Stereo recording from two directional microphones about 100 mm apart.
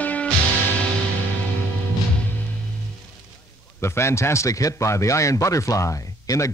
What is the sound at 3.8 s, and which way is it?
A man's voice, 25° left (ahead or behind).